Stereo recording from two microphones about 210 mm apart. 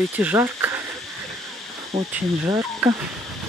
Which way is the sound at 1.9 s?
30° right (ahead or behind).